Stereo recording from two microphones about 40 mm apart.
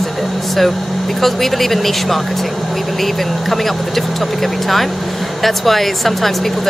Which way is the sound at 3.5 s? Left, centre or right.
Centre.